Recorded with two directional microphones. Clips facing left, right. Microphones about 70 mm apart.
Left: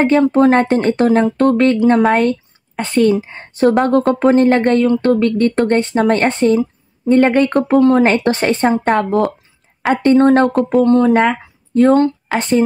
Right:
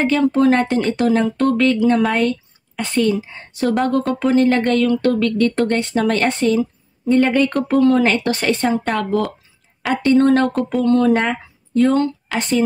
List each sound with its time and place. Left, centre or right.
0.0 s speech: left
7.2 s speech: left
12.3 s speech: left